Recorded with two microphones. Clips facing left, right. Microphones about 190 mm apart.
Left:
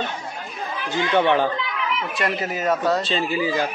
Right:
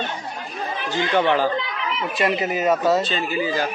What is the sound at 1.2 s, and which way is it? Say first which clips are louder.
Speech: even; 20° left (ahead or behind).